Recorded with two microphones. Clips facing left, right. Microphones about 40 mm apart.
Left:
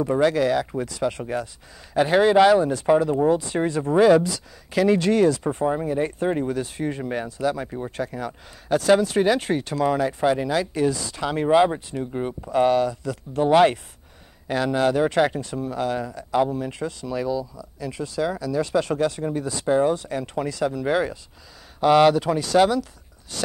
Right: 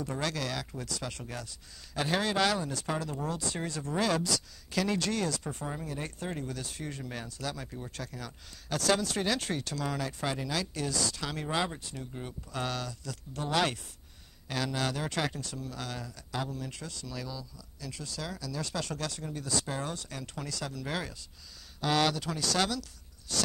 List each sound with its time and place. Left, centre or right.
0.0 s speech: left